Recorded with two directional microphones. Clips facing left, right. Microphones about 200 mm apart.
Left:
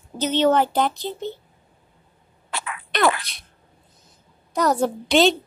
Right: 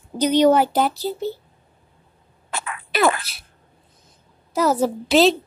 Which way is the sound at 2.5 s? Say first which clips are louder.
Right 1 dB; 40° right (ahead or behind).